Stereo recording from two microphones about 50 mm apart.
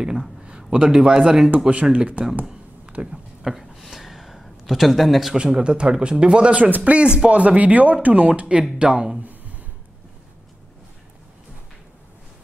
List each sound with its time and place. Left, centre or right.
0.0 s speech: centre
1.7 s speech: right
3.1 s a sound: centre
5.4 s speech: centre